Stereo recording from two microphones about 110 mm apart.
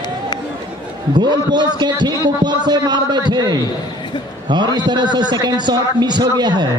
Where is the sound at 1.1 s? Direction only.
40° right (ahead or behind).